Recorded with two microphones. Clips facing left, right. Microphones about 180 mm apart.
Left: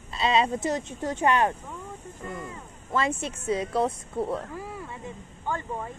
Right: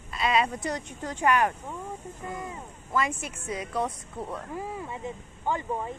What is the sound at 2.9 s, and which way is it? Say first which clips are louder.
Speech: left 2 dB; 25° left (ahead or behind).